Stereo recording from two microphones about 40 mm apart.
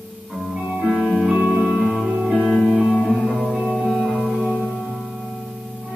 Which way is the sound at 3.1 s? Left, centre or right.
Centre.